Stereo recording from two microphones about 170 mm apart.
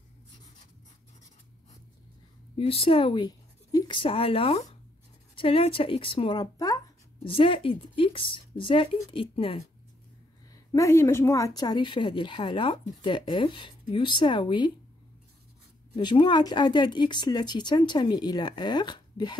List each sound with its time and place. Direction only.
2.5 s speech: 35° left (ahead or behind)
10.5 s speech: 20° left (ahead or behind)
16.0 s speech: 25° left (ahead or behind)